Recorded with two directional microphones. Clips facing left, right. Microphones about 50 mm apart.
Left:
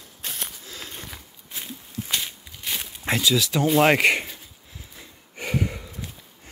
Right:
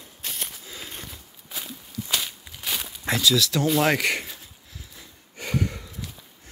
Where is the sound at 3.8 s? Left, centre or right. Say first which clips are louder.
Left 4 dB; left.